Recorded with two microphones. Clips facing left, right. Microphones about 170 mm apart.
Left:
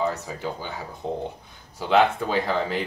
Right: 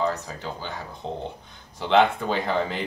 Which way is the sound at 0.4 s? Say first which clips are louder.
Left 2 dB; 10° left (ahead or behind).